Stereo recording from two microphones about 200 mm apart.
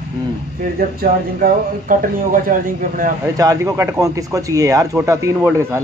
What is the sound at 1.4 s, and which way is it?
Speech, 45° right (ahead or behind).